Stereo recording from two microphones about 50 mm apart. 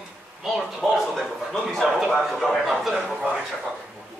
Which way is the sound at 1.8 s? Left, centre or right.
Centre.